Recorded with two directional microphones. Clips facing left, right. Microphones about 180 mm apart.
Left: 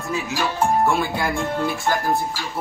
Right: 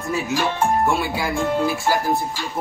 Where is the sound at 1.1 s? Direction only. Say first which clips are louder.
Right 2 dB; centre (ahead or behind).